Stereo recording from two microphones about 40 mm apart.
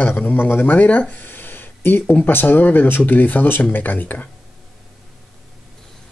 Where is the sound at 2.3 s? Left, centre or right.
Left.